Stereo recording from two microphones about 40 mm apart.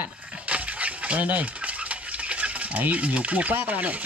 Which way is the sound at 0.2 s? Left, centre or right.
Right.